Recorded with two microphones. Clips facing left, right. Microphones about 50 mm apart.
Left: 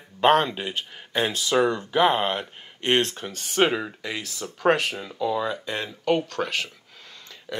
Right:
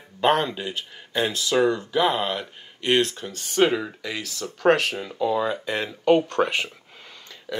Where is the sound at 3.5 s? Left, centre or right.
Centre.